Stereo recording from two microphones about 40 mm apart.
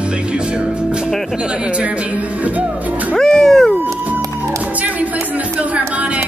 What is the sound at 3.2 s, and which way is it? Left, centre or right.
Music, centre.